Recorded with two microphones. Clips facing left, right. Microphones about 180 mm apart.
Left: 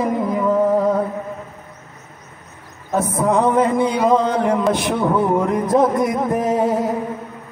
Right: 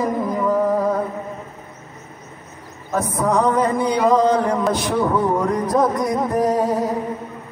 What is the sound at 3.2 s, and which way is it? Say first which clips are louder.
Speech: left 2 dB; 25° left (ahead or behind).